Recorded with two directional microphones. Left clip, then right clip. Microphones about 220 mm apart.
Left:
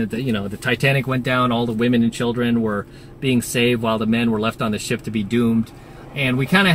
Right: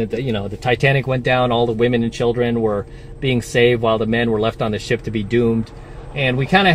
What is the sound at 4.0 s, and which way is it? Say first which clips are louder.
Speech: right 3 dB; 10° right (ahead or behind).